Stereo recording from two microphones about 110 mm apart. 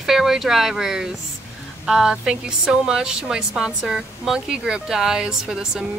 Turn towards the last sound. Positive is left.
turn(degrees=-5)  # may be behind; listen again after turning